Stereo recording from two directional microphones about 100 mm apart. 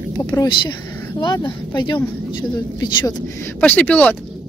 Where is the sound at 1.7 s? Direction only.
50° left (ahead or behind).